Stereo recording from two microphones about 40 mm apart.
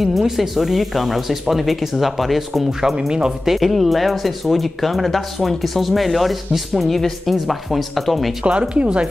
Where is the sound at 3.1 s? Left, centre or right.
Centre.